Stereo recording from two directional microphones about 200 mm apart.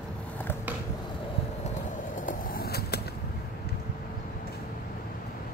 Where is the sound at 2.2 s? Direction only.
45° left (ahead or behind).